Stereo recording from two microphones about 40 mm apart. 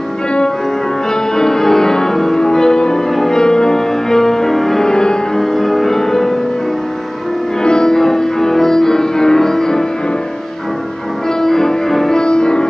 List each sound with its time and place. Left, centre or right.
1.1 s music: centre
3.1 s music: centre
3.3 s music: centre
5.4 s music: centre
7.6 s music: centre
11.2 s music: centre